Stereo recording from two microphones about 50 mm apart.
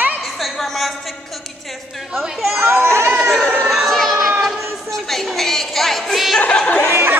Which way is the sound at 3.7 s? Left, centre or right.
Centre.